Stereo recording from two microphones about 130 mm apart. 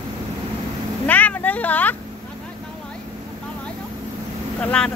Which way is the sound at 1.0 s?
10° left (ahead or behind).